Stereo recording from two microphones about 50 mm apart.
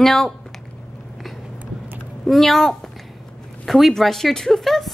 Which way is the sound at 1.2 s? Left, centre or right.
Centre.